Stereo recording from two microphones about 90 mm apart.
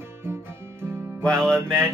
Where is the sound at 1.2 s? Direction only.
5° left (ahead or behind).